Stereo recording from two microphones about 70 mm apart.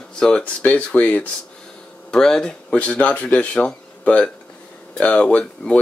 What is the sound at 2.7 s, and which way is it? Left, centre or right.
Speech, centre.